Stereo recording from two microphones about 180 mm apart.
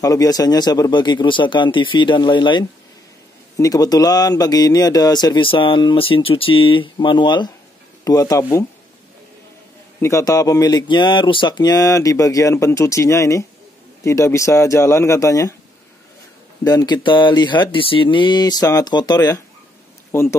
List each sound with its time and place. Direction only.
0.0 s speech: 20° left (ahead or behind)
9.9 s speech: 15° left (ahead or behind)
16.6 s speech: 20° left (ahead or behind)